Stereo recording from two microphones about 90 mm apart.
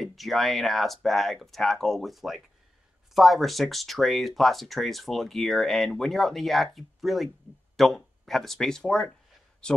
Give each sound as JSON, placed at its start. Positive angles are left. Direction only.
{"t": 0.0, "sound": "speech", "side_deg": 0}